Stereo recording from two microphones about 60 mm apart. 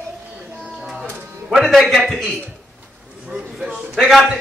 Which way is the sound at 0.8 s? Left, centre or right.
Centre.